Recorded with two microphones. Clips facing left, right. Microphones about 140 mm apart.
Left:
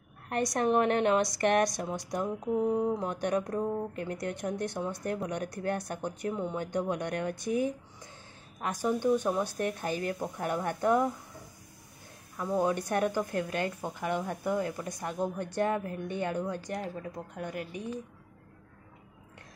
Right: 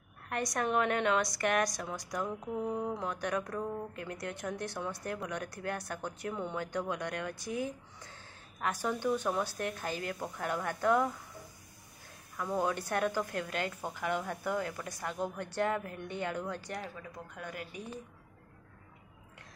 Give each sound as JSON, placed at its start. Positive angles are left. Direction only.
{"t": 0.3, "sound": "a woman's voice", "side_deg": 25}
{"t": 6.9, "sound": "speech", "side_deg": 50}
{"t": 8.5, "sound": "a woman's voice", "side_deg": 15}
{"t": 12.5, "sound": "a woman's voice", "side_deg": 15}
{"t": 15.8, "sound": "speech", "side_deg": 35}
{"t": 16.1, "sound": "a woman's voice", "side_deg": 20}
{"t": 17.1, "sound": "a woman's voice", "side_deg": 30}